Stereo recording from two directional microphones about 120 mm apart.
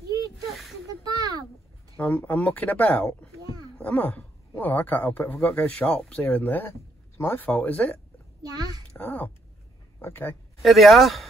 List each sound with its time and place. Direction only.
0.5 s a sound: centre (ahead or behind)
1.0 s a sound: 35° right (ahead or behind)
2.0 s speech: 15° left (ahead or behind)
8.4 s a child's voice: 35° right (ahead or behind)
8.9 s speech: 15° left (ahead or behind)
10.6 s speech: centre (ahead or behind)